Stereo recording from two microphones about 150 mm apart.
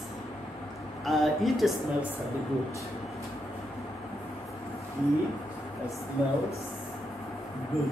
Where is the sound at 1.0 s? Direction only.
Centre (ahead or behind).